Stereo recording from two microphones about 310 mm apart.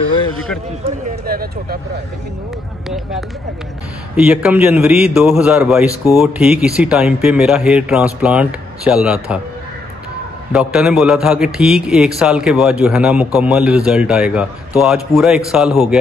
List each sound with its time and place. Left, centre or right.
0.8 s speech: right
4.3 s a man's voice: centre
10.5 s a man's voice: centre